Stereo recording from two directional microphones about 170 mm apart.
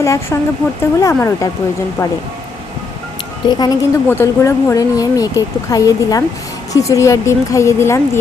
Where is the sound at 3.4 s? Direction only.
25° left (ahead or behind).